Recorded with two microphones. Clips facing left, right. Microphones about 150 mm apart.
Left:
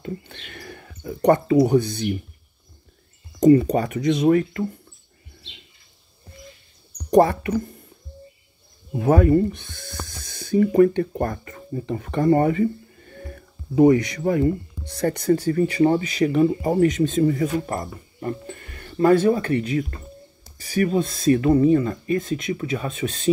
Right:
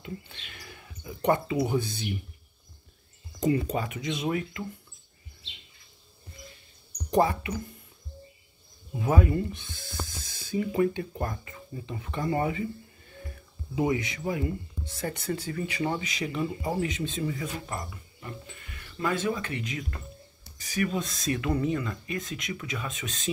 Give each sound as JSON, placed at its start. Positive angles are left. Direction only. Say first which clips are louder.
{"t": 0.0, "sound": "speech", "louder": "left 7 dB", "side_deg": 55}
{"t": 3.7, "sound": "speech", "louder": "left 10 dB", "side_deg": 45}
{"t": 7.1, "sound": "speech", "louder": "left 8 dB", "side_deg": 55}
{"t": 8.9, "sound": "speech", "louder": "left 9 dB", "side_deg": 50}
{"t": 9.5, "sound": "speech", "louder": "left 6 dB", "side_deg": 65}
{"t": 15.6, "sound": "speech", "louder": "left 11 dB", "side_deg": 40}
{"t": 16.0, "sound": "speech", "louder": "left 12 dB", "side_deg": 55}